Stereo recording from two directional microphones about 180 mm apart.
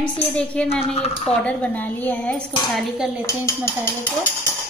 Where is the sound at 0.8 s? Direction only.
35° left (ahead or behind).